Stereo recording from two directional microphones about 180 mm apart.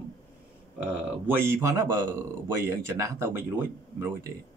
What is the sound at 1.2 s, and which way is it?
Speech, 15° right (ahead or behind).